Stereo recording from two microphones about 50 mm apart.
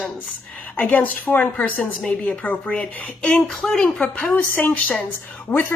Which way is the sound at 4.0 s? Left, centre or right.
Left.